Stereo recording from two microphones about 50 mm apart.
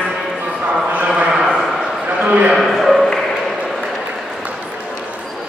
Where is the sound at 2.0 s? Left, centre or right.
Right.